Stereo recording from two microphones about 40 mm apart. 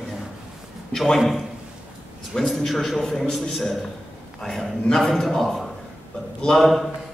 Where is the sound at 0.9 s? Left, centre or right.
Centre.